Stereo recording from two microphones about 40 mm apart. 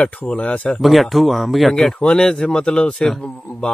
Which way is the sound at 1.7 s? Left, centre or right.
Centre.